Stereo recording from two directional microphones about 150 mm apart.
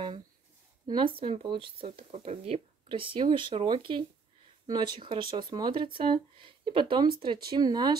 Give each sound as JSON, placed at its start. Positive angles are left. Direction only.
{"t": 0.8, "sound": "speech", "side_deg": -35}